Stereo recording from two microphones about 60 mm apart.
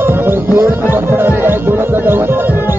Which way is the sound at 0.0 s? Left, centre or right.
Right.